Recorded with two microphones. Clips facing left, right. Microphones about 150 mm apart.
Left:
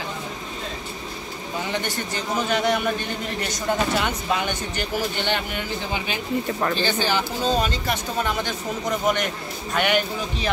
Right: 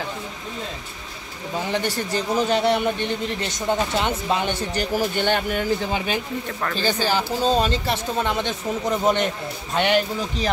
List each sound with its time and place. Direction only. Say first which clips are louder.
1.7 s speech: right 5 dB; 35° right (ahead or behind)
5.2 s speech: right 4 dB; 45° right (ahead or behind)